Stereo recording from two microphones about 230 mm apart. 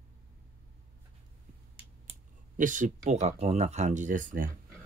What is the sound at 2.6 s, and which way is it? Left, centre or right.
Speech, right.